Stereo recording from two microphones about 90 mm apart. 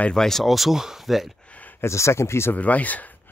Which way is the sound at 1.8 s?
30° left (ahead or behind).